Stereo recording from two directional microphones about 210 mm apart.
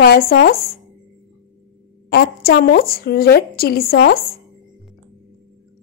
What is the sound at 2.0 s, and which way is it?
A woman's voice, 50° left (ahead or behind).